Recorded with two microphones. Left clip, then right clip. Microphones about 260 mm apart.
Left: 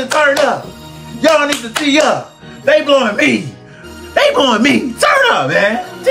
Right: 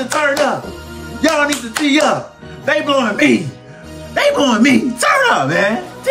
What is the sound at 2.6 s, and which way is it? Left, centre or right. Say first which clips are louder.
Speech: left 4 dB; centre.